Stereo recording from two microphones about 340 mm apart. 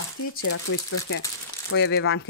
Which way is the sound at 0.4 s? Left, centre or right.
Left.